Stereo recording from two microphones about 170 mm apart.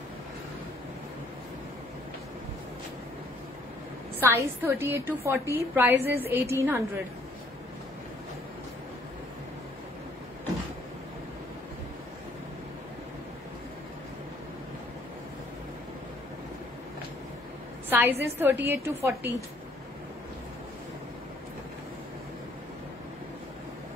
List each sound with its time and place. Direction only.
4.2 s a woman's voice: 15° right (ahead or behind)
17.8 s a woman's voice: 10° right (ahead or behind)